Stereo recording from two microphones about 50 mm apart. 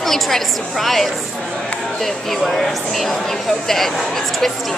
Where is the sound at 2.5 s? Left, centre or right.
Centre.